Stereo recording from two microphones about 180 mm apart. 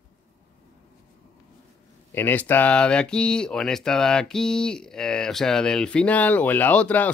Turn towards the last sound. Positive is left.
turn(degrees=5)  # may be behind; listen again after turning